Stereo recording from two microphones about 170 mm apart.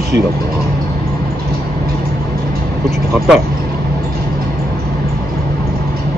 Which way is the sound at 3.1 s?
Centre (ahead or behind).